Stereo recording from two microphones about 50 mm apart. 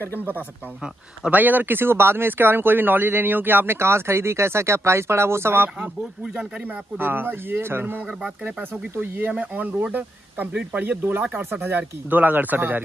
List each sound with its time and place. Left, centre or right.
1.3 s speech: right
7.0 s speech: right
9.3 s speech: right
10.8 s speech: right